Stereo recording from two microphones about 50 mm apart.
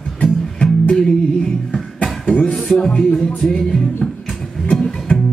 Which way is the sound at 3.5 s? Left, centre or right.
Centre.